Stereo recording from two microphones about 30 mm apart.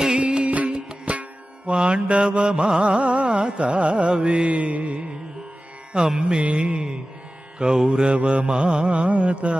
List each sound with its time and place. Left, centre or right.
0.1 s music: right
0.7 s music: right
1.7 s mantra: right
4.2 s music: right
6.1 s mantra: right